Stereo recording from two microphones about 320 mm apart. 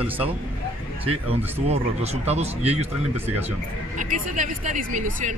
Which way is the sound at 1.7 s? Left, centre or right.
Centre.